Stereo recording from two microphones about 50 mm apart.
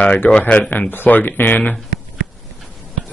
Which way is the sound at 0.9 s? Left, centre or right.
Left.